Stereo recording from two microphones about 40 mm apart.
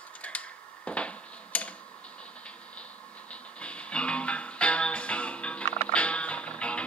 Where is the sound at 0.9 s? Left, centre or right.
Left.